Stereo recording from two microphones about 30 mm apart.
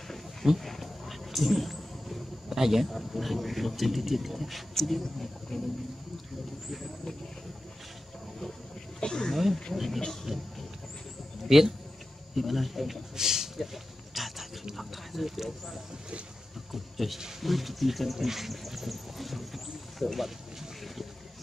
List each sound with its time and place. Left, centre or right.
0.6 s a sound: centre
2.5 s speech: centre
5.5 s speech: centre
9.0 s speech: left
9.3 s speech: centre
9.8 s speech: centre
11.4 s a man's voice: centre
13.1 s speech: centre
14.1 s a sound: centre
14.8 s speech: centre
16.7 s speech: centre
18.1 s a sound: centre
20.8 s boat: centre